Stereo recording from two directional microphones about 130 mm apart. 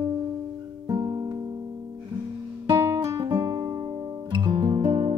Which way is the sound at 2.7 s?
25° right (ahead or behind).